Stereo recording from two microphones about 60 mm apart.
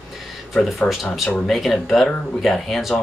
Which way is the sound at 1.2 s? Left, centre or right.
Centre.